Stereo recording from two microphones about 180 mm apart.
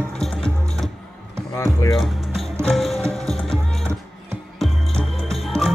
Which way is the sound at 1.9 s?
Centre (ahead or behind).